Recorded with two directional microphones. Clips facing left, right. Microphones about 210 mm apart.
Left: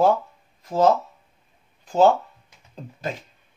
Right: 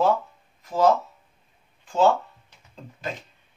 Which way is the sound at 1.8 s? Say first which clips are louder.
Left 3 dB; 40° left (ahead or behind).